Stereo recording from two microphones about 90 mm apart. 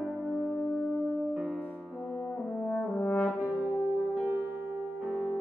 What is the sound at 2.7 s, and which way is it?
French horn, 15° left (ahead or behind).